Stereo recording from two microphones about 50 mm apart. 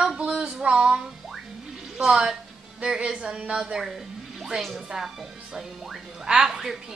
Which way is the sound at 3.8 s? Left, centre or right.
Centre.